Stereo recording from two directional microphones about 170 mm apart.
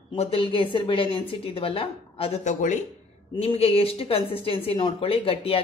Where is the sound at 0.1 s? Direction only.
35° left (ahead or behind).